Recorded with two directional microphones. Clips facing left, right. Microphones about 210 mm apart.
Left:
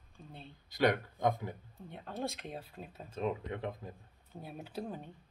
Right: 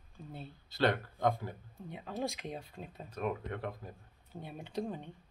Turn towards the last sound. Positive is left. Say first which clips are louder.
# right 3 dB
turn(degrees=5)  # may be behind; listen again after turning